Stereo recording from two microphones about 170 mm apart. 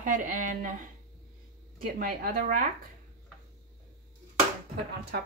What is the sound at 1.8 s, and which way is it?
Speech, 60° right (ahead or behind).